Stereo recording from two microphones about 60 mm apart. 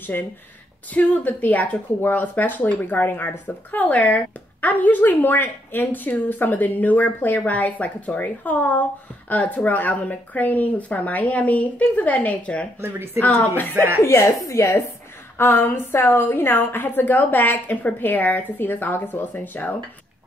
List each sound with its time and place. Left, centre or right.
0.1 s speech: left
12.8 s speech: right
13.6 s a woman's voice: left
14.0 s speech: left
15.3 s a woman's voice: left